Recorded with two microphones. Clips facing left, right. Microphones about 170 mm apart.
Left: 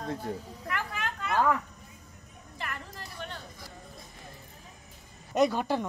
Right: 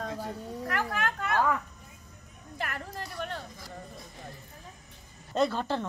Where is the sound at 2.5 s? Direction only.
55° right (ahead or behind).